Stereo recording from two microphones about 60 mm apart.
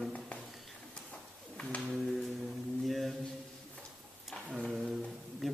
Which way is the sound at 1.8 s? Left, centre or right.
Centre.